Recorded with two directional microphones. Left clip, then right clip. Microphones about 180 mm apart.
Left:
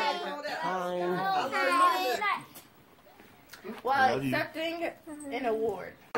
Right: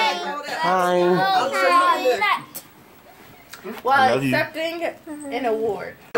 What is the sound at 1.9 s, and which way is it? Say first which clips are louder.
Children playing: right 9 dB; 40° left (ahead or behind).